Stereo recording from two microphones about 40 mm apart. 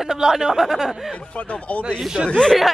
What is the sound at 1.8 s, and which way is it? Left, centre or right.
Speech, right.